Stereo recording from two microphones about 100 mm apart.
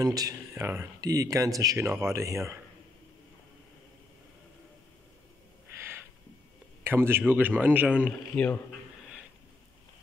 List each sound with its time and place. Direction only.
0.0 s speech: 40° right (ahead or behind)
0.6 s speech: 25° right (ahead or behind)
1.0 s speech: 35° right (ahead or behind)
6.8 s a man's voice: 25° right (ahead or behind)